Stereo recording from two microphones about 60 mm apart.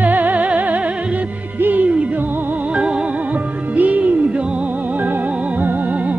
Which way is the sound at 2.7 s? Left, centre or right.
Centre.